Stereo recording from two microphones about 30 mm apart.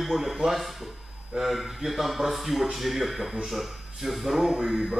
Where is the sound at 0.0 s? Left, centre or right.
Centre.